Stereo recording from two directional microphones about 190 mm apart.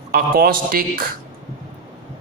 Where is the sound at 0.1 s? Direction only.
50° right (ahead or behind).